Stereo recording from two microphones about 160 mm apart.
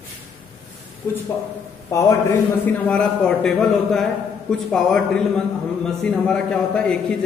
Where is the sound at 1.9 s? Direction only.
20° left (ahead or behind).